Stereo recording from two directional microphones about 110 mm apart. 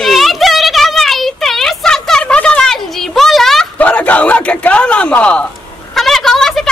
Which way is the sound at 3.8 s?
15° left (ahead or behind).